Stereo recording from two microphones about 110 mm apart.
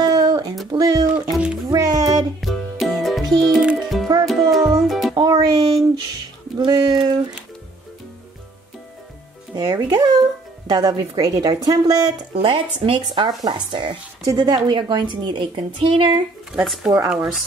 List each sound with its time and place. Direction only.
0.0 s a sound: 35° right (ahead or behind)
0.7 s a woman's voice: 35° right (ahead or behind)
1.3 s music: 10° right (ahead or behind)
1.7 s music: 35° right (ahead or behind)
2.4 s music: centre (ahead or behind)
5.1 s music: 35° right (ahead or behind)
6.6 s a woman's voice: 35° right (ahead or behind)
9.6 s a woman's voice: 35° right (ahead or behind)
12.4 s speech: 60° right (ahead or behind)
16.5 s speech: centre (ahead or behind)